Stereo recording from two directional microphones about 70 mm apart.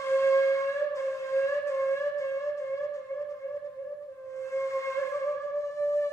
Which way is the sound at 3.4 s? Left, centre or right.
Left.